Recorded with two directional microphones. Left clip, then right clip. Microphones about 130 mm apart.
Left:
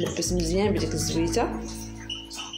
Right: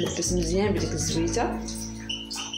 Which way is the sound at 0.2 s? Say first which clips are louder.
Left 1 dB; 10° left (ahead or behind).